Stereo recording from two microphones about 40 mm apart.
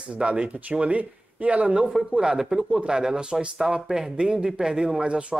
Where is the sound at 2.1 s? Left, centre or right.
Centre.